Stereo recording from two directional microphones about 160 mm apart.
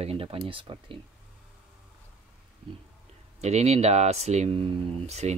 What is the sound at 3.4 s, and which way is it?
Speech, 45° right (ahead or behind).